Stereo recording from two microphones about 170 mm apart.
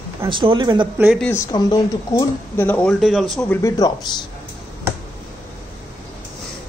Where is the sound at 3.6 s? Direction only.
20° left (ahead or behind).